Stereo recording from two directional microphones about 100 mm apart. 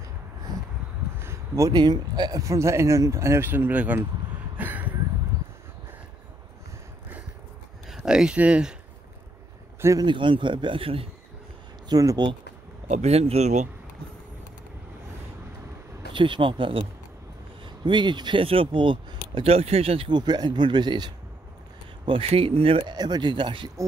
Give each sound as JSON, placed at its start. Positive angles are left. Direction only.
{"t": 1.1, "sound": "a sound", "side_deg": -25}
{"t": 1.8, "sound": "speech", "side_deg": -45}
{"t": 2.4, "sound": "speech", "side_deg": -30}
{"t": 4.6, "sound": "a sound", "side_deg": -15}
{"t": 7.9, "sound": "speech", "side_deg": -5}
{"t": 9.9, "sound": "speech", "side_deg": -55}
{"t": 11.9, "sound": "speech", "side_deg": -40}
{"t": 13.0, "sound": "speech", "side_deg": -90}
{"t": 16.1, "sound": "speech", "side_deg": -55}
{"t": 20.1, "sound": "speech", "side_deg": -45}
{"t": 22.0, "sound": "speech", "side_deg": -70}
{"t": 22.8, "sound": "speech", "side_deg": -45}